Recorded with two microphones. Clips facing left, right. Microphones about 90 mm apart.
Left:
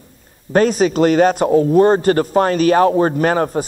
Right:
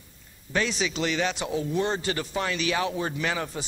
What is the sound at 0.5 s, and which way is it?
A man's voice, 50° left (ahead or behind).